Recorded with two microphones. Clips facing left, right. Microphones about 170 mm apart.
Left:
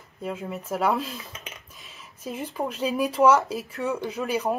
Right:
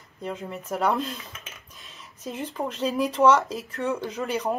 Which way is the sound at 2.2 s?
5° left (ahead or behind).